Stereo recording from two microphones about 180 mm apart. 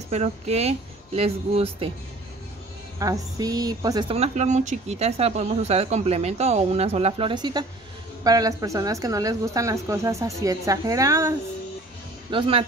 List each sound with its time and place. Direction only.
0.1 s speech: 35° right (ahead or behind)
3.0 s a woman's voice: 20° right (ahead or behind)
4.1 s a woman's voice: 40° right (ahead or behind); by 11.3 s 15° right (ahead or behind)
12.3 s a woman's voice: 30° right (ahead or behind)